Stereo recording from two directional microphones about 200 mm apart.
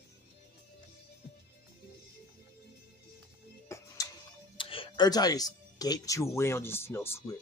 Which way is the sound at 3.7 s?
15° left (ahead or behind).